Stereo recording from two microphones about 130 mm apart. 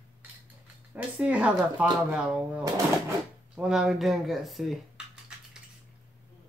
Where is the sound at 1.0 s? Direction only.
10° right (ahead or behind).